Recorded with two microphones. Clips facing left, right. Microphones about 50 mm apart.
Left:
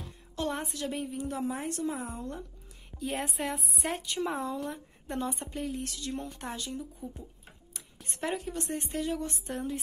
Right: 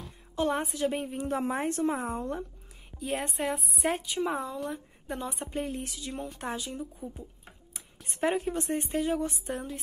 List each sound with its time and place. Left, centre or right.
0.4 s a woman's voice: right
1.2 s speech: right
2.9 s a woman's voice: centre
5.5 s a woman's voice: right
5.9 s speech: centre
6.7 s a woman's voice: right
8.2 s a woman's voice: right
8.6 s speech: centre
8.9 s a woman's voice: right
9.2 s a woman's voice: centre